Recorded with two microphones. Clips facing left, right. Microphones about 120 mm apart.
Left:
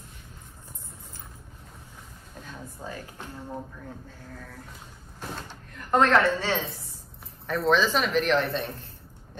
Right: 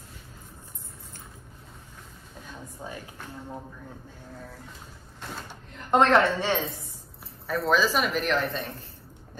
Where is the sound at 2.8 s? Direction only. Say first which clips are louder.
Left 1 dB; 5° right (ahead or behind).